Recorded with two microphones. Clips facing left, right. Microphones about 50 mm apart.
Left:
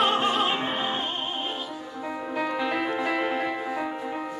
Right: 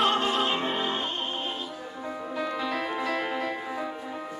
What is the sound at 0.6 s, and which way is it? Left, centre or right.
Music, centre.